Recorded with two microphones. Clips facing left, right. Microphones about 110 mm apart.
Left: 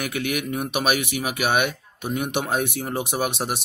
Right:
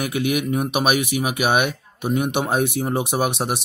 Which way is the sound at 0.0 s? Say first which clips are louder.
Right 4 dB; 20° right (ahead or behind).